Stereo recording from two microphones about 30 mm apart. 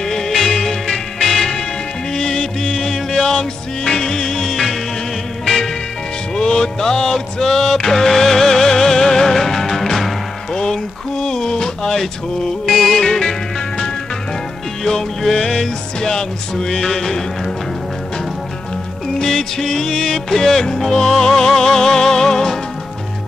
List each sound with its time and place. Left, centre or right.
0.0 s music: centre
2.1 s music: left
4.5 s music: centre
10.5 s music: left
11.3 s a sound: left
12.0 s music: centre
15.3 s music: centre
19.2 s music: centre